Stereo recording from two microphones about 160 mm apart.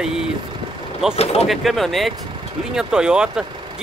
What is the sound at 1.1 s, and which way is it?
Speech, 40° left (ahead or behind).